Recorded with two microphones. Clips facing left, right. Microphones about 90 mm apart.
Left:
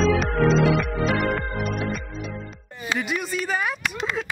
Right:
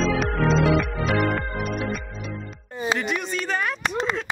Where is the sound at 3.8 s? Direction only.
30° right (ahead or behind).